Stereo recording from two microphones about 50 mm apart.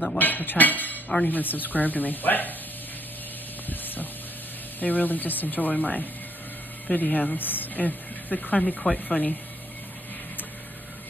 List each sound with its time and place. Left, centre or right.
0.2 s speech: left
3.6 s a sound: left
4.7 s speech: left
8.5 s speech: centre